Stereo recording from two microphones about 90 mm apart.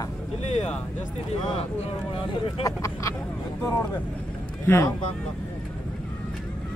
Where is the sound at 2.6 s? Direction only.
35° left (ahead or behind).